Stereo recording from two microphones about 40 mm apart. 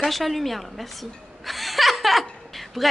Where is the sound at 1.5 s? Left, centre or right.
Centre.